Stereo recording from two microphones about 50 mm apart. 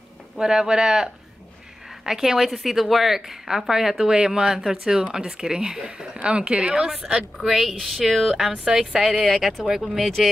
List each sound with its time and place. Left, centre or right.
0.4 s a woman's voice: centre
8.1 s speech: centre